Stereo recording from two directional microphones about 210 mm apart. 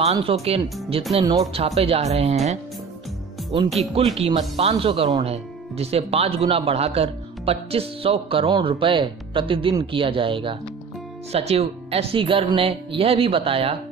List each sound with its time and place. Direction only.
0.1 s speech: 25° right (ahead or behind)
1.2 s speech: 15° right (ahead or behind)
1.8 s speech: 30° right (ahead or behind)
3.9 s speech: 30° right (ahead or behind)